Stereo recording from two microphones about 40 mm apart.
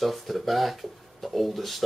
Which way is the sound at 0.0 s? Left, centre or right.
Centre.